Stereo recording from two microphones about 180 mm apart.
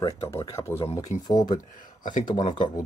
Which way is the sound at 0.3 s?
15° left (ahead or behind).